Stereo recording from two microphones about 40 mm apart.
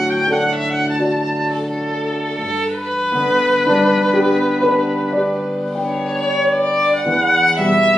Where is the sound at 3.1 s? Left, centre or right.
Centre.